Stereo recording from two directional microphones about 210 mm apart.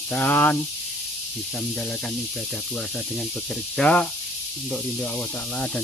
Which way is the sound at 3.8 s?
5° left (ahead or behind).